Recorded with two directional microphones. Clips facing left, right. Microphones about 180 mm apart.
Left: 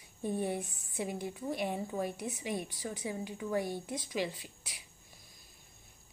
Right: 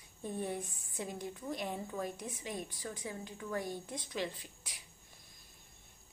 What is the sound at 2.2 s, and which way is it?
Speech, 70° left (ahead or behind).